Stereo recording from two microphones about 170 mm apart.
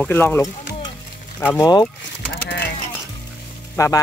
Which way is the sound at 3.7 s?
20° left (ahead or behind).